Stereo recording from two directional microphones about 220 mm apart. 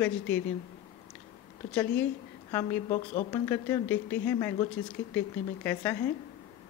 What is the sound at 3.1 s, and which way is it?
A woman's voice, 20° left (ahead or behind).